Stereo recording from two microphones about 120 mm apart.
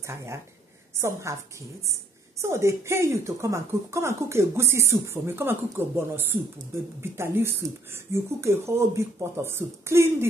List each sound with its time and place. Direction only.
0.0 s a woman's voice: 25° right (ahead or behind)
2.4 s a woman's voice: 25° right (ahead or behind)